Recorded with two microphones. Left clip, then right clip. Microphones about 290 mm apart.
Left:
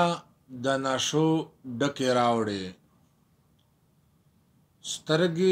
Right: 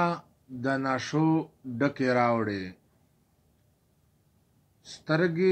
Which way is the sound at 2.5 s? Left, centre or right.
Left.